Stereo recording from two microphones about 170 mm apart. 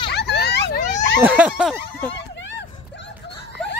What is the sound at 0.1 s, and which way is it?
Vehicle, 75° left (ahead or behind).